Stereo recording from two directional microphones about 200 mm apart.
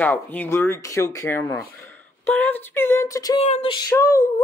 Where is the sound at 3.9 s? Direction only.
15° left (ahead or behind).